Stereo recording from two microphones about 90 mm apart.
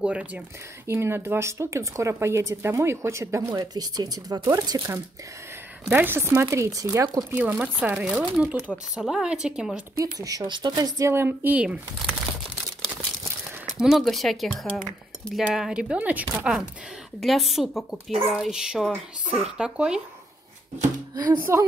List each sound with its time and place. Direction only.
0.0 s speech: 10° right (ahead or behind)
0.8 s speech: 25° right (ahead or behind)
3.7 s speech: 45° right (ahead or behind)
5.9 s speech: 20° right (ahead or behind)
7.5 s speech: 15° right (ahead or behind)
10.1 s speech: 40° right (ahead or behind)
10.4 s speech: 60° right (ahead or behind)
10.8 s speech: 35° right (ahead or behind)
11.6 s speech: 10° right (ahead or behind)
13.7 s speech: 5° right (ahead or behind)
15.5 s speech: 5° right (ahead or behind)
16.3 s speech: 5° right (ahead or behind)
21.1 s speech: 50° right (ahead or behind)
21.4 s speech: 25° right (ahead or behind)